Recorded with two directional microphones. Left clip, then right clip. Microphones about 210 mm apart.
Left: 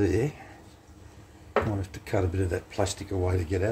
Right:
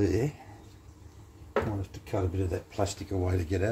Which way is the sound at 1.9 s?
25° left (ahead or behind).